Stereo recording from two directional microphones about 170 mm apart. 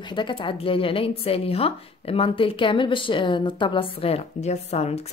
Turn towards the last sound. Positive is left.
turn(degrees=40)  # may be behind; listen again after turning